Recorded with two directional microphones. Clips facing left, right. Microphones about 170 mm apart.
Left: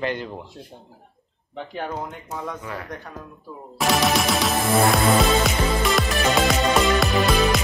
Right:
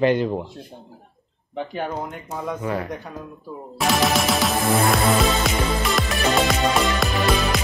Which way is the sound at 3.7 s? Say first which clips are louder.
Even; centre (ahead or behind).